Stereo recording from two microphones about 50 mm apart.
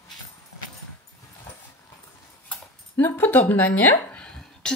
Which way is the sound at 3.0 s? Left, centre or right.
Left.